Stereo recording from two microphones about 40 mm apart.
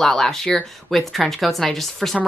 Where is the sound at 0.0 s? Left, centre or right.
Centre.